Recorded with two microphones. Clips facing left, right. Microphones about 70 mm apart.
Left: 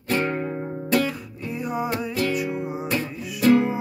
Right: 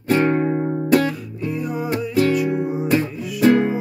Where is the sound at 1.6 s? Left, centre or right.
Centre.